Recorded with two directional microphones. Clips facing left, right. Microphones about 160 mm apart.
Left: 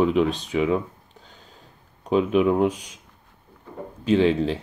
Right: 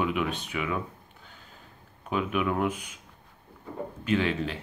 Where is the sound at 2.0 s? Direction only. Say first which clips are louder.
Left 9 dB; 30° left (ahead or behind).